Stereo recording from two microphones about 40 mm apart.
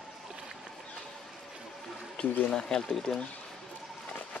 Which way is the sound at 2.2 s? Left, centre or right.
Left.